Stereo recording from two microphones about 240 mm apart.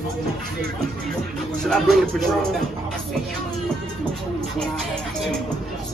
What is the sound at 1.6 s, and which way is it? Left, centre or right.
Speech, centre.